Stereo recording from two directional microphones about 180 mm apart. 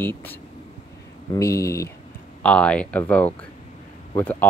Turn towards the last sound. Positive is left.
turn(degrees=10)  # may be behind; listen again after turning